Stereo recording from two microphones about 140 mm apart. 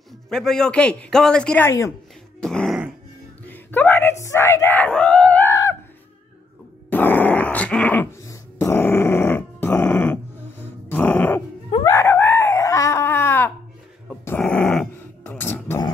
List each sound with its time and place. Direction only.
0.3 s a man's voice: 5° left (ahead or behind)
1.7 s a woman's voice: 20° left (ahead or behind)
2.4 s dog: 5° left (ahead or behind)
3.4 s screaming: 15° left (ahead or behind)
5.5 s a sound: 20° left (ahead or behind)
6.9 s grunt: 15° left (ahead or behind)
9.8 s dog: 10° left (ahead or behind)
10.9 s groan: 10° left (ahead or behind)
11.8 s screaming: 20° left (ahead or behind)
14.2 s dog: 10° left (ahead or behind)
15.3 s a sound: 15° left (ahead or behind)